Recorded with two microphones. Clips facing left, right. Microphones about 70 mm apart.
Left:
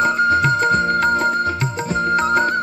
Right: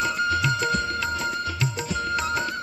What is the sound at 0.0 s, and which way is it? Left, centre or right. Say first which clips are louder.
Music: left 8 dB; left.